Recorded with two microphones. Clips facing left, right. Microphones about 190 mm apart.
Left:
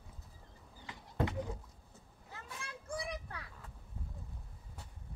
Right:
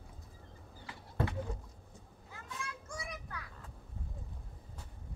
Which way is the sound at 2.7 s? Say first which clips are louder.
Left 4 dB; 30° left (ahead or behind).